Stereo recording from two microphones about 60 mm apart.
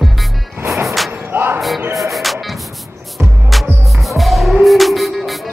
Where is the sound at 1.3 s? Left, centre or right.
Right.